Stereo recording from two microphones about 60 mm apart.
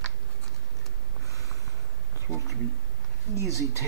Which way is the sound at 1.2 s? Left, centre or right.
Left.